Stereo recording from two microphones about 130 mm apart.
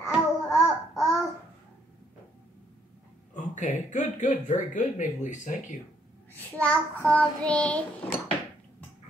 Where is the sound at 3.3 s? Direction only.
70° left (ahead or behind).